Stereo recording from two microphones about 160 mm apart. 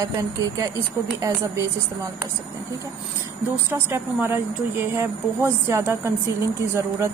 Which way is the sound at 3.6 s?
15° right (ahead or behind).